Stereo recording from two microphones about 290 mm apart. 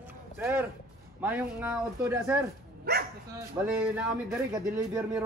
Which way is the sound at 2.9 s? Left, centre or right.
Right.